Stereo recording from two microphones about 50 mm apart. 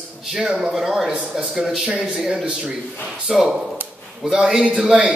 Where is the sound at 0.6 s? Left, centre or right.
Centre.